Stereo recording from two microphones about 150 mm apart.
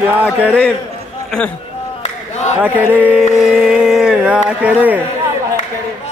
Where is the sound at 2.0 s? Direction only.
50° left (ahead or behind).